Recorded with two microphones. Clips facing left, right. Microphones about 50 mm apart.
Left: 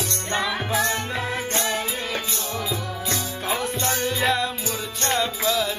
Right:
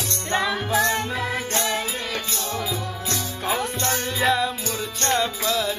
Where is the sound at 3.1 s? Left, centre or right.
Centre.